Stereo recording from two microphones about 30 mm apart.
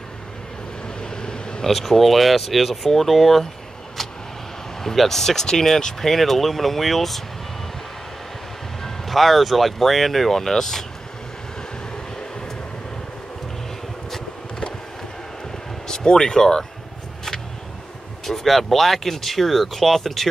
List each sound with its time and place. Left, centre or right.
0.8 s vehicle: left
1.6 s speech: centre
4.8 s speech: centre
8.8 s speech: centre
15.9 s speech: left
18.2 s speech: centre